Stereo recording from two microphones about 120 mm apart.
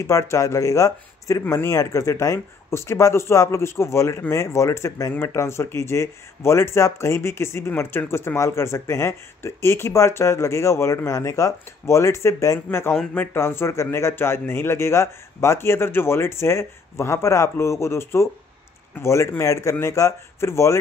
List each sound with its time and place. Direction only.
0.0 s speech: 25° left (ahead or behind)